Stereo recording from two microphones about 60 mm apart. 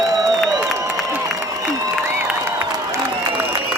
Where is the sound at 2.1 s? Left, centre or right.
Right.